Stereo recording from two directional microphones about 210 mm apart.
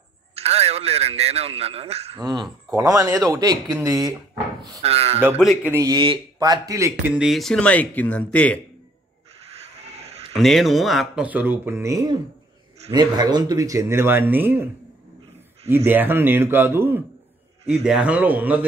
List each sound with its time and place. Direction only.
0.4 s a man's voice: 30° right (ahead or behind)
2.1 s a man's voice: 20° right (ahead or behind)
4.8 s a man's voice: 30° right (ahead or behind)
5.7 s speech: 15° right (ahead or behind); by 8.5 s 5° left (ahead or behind)
10.3 s speech: centre (ahead or behind)
15.7 s speech: 10° right (ahead or behind)